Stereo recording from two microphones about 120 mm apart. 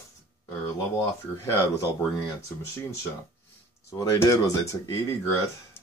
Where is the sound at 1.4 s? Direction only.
20° left (ahead or behind).